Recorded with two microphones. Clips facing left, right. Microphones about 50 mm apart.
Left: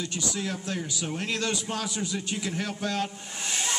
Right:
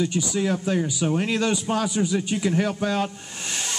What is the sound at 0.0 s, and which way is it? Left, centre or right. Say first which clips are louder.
Speech: right 8 dB; centre.